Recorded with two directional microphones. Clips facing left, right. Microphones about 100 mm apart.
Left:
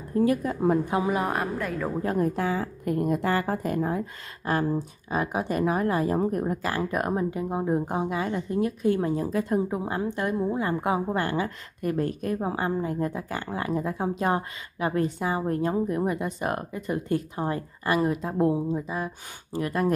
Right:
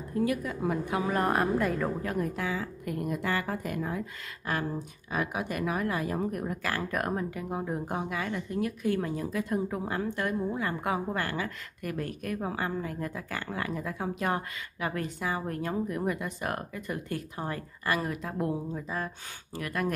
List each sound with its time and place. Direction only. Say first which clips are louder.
0.2 s a woman's voice: left 6 dB; 35° left (ahead or behind)
1.0 s a woman's voice: left 1 dB; 5° left (ahead or behind)
2.0 s a woman's voice: left 6 dB; 35° left (ahead or behind); by 19.1 s 15° left (ahead or behind)
19.5 s a woman's voice: left 6 dB; 25° left (ahead or behind)